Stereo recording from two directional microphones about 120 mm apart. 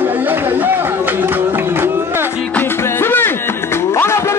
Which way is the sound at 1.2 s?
20° right (ahead or behind).